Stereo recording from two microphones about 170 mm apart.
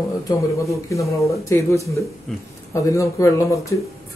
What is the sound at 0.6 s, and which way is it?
Speech, 20° left (ahead or behind).